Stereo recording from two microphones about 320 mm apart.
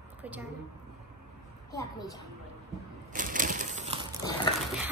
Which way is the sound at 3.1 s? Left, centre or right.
Right.